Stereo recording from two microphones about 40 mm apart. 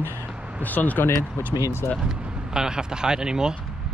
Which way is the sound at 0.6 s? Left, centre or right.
Left.